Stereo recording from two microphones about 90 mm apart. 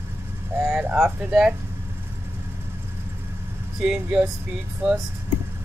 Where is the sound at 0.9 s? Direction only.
5° right (ahead or behind).